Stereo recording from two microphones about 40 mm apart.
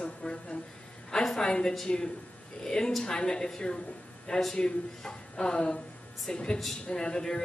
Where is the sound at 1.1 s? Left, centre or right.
Centre.